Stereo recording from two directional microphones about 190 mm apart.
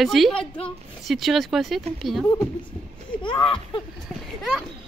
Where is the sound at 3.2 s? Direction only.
25° left (ahead or behind).